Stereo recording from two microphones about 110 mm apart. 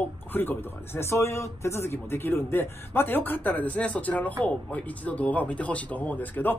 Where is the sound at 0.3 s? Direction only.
20° left (ahead or behind).